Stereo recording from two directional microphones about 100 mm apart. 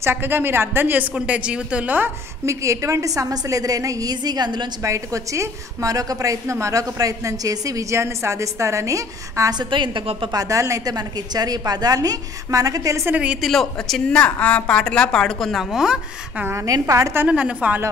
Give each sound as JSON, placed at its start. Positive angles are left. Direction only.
{"t": 0.0, "sound": "a woman's voice", "side_deg": -20}
{"t": 2.4, "sound": "a woman's voice", "side_deg": -30}
{"t": 4.8, "sound": "a woman's voice", "side_deg": -30}
{"t": 9.6, "sound": "a woman's voice", "side_deg": -55}
{"t": 10.3, "sound": "a woman's voice", "side_deg": -35}
{"t": 13.0, "sound": "a woman's voice", "side_deg": -15}
{"t": 13.4, "sound": "a woman's voice", "side_deg": 5}
{"t": 16.4, "sound": "a woman's voice", "side_deg": -30}
{"t": 17.3, "sound": "a woman's voice", "side_deg": -10}